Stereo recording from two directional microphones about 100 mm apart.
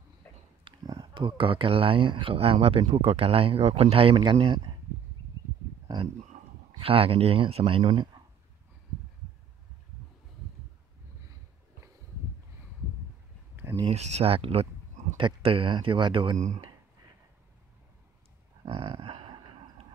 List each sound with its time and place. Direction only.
0.7 s speech: 50° right (ahead or behind)
2.3 s speech: 75° right (ahead or behind)
2.9 s speech: 80° right; by 4.7 s 55° right (ahead or behind)
6.3 s a sound: 65° right (ahead or behind)
6.8 s speech: 70° right (ahead or behind); by 8.2 s 50° right (ahead or behind)
13.8 s speech: 85° right
15.1 s speech: 60° right (ahead or behind)
18.7 s dog: 55° right (ahead or behind)